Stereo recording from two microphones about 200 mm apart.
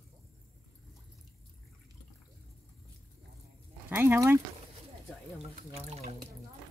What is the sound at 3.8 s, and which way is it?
Speech, 10° right (ahead or behind).